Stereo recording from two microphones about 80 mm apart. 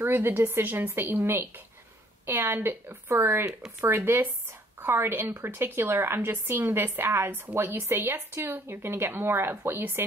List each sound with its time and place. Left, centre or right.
0.0 s speech: right